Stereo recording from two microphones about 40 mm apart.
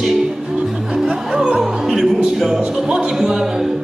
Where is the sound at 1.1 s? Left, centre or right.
Centre.